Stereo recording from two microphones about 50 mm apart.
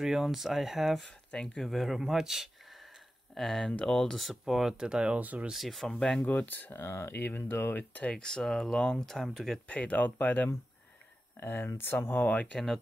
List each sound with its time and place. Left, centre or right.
0.0 s speech: centre
1.0 s speech: centre
1.6 s speech: centre
4.2 s speech: centre; by 5.5 s right
5.5 s speech: centre
6.2 s speech: left
6.7 s speech: left
8.0 s speech: left
8.3 s speech: centre
9.7 s speech: left
12.2 s speech: left